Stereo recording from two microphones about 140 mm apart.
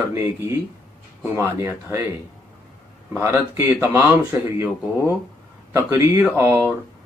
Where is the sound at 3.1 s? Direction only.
15° right (ahead or behind).